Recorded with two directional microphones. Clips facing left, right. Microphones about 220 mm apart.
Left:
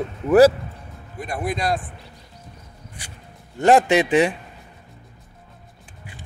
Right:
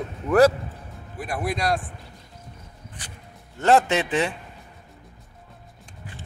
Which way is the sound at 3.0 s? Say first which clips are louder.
Even; 10° left (ahead or behind).